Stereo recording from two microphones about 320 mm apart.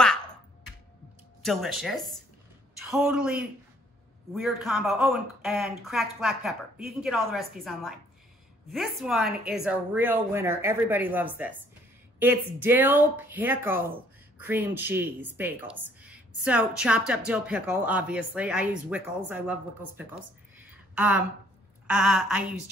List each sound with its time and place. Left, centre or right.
1.4 s speech: centre
8.7 s a woman's voice: centre